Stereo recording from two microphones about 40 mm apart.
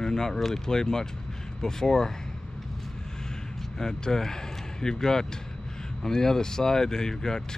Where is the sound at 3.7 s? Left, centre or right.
Centre.